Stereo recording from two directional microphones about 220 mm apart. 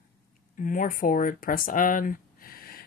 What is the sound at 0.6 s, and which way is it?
Speech, 35° left (ahead or behind).